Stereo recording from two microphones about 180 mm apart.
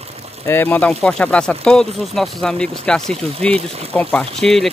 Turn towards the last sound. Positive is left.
turn(degrees=0)  # may be behind; listen again after turning